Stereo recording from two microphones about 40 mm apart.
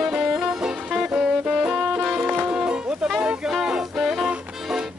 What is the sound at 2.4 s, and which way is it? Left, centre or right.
Music, right.